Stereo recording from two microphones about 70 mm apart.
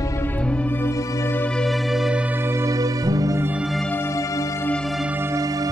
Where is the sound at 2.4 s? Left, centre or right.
Right.